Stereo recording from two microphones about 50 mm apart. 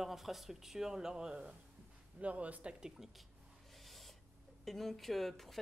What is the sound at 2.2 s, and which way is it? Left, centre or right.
Speech, right.